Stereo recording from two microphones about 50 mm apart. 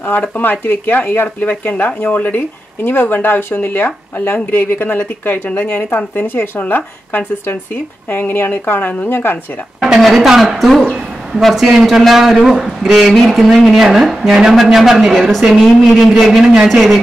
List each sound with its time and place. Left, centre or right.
0.4 s speech: left
6.6 s speech: left
9.8 s speech: centre
16.3 s a man's voice: centre
16.6 s speech: centre